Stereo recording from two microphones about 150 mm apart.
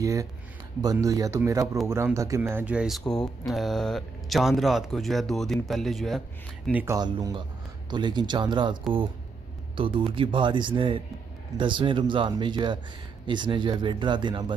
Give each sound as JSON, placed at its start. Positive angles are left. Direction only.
{"t": 0.0, "sound": "speech", "side_deg": -20}
{"t": 6.7, "sound": "speech", "side_deg": -15}
{"t": 7.0, "sound": "speech", "side_deg": -25}
{"t": 9.8, "sound": "speech", "side_deg": -35}